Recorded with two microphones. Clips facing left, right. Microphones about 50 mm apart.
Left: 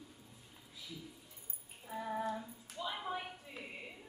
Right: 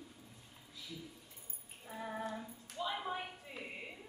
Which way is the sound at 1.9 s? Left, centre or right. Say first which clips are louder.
Left 3 dB; centre.